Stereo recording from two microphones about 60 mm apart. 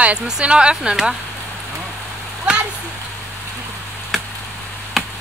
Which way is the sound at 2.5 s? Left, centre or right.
Centre.